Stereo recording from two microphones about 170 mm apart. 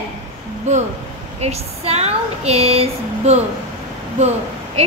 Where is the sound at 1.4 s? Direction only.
35° right (ahead or behind).